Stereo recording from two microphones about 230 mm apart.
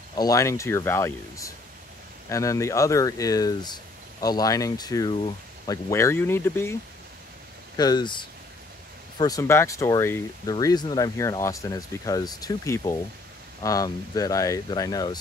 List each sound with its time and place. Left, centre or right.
0.1 s speech: centre